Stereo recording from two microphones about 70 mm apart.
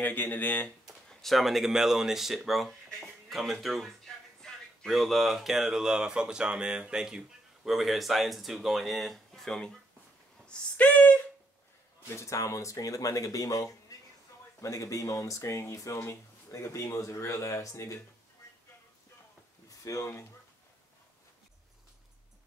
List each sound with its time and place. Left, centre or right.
0.0 s speech: left
1.0 s speech: centre
10.4 s speech: centre
12.2 s speech: left
19.8 s speech: left